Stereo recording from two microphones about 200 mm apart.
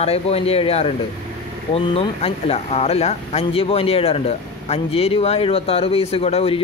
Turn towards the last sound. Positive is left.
turn(degrees=30)  # may be behind; listen again after turning